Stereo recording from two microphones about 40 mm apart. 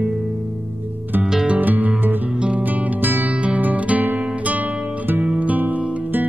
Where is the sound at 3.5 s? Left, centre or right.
Right.